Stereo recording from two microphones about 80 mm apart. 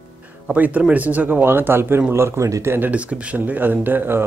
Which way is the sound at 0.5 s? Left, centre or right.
Centre.